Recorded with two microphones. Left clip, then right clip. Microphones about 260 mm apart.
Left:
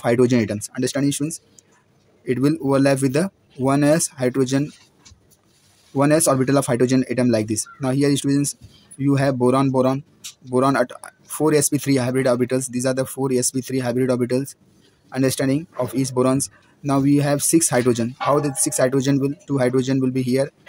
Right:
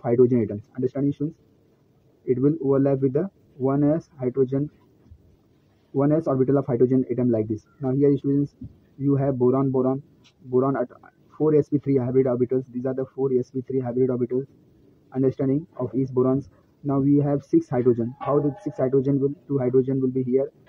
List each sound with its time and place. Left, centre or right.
0.0 s speech: left
2.2 s speech: left
5.9 s speech: left
11.6 s speech: left
13.4 s speech: left